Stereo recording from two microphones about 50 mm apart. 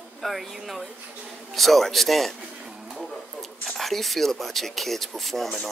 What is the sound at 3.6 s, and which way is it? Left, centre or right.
A man's voice, centre.